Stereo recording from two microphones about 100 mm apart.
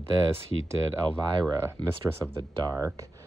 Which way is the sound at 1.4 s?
25° right (ahead or behind).